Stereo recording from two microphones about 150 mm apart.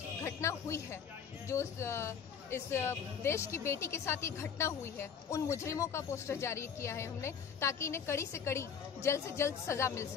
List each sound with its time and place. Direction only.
0.2 s speech: 20° left (ahead or behind)